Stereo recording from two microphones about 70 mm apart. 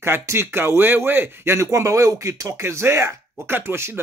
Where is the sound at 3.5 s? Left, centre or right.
Right.